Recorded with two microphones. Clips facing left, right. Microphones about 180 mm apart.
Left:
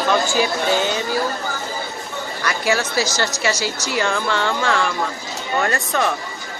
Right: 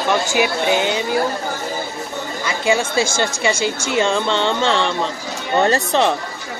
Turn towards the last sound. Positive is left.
turn(degrees=-25)  # may be behind; listen again after turning